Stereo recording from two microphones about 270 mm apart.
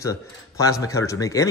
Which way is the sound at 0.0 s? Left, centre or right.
Centre.